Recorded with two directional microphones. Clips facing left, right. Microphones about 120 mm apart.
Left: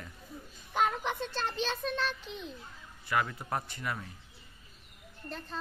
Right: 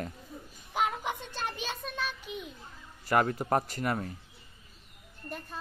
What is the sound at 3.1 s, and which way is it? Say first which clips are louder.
A man's voice: right 6 dB; 45° right (ahead or behind).